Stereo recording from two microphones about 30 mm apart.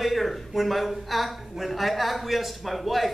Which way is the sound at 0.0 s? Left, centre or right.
Centre.